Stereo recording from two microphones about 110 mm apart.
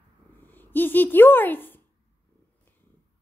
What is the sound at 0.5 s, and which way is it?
A child's voice, 15° left (ahead or behind).